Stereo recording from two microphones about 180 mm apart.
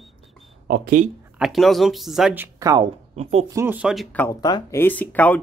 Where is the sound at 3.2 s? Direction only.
40° right (ahead or behind).